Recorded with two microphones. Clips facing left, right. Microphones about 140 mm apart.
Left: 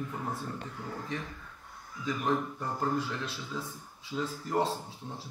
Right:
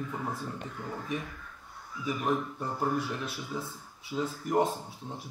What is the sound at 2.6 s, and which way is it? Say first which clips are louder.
Speech: right 1 dB; 15° right (ahead or behind).